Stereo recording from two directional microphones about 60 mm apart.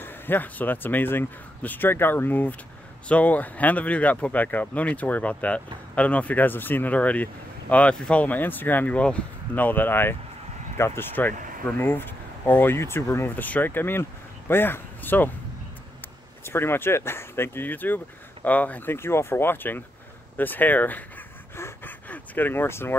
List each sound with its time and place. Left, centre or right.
0.0 s speech: left
12.7 s speech: left
16.4 s speech: left
18.9 s speech: left
21.8 s a sound: left
22.5 s speech: left